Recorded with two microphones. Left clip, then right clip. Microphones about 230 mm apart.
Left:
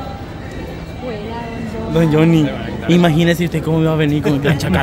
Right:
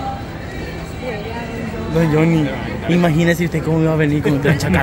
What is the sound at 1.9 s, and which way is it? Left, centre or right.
A man's voice, centre.